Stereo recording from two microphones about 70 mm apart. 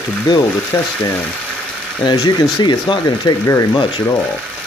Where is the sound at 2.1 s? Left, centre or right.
Left.